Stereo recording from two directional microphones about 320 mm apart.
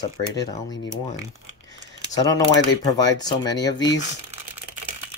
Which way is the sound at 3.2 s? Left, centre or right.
Centre.